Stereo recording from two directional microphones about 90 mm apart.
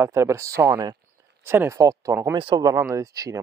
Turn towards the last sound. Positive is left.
turn(degrees=-40)  # may be behind; listen again after turning